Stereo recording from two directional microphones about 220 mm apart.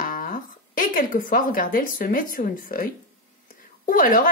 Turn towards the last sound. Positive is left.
turn(degrees=40)  # may be behind; listen again after turning